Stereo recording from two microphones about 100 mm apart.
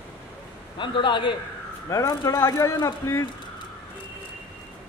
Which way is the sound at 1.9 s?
25° left (ahead or behind).